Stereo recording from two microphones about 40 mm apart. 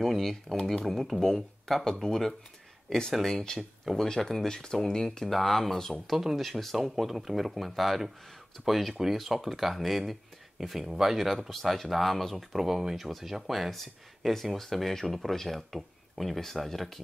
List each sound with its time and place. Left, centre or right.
0.0 s speech: centre
6.0 s speech: centre
12.5 s speech: centre
12.9 s speech: centre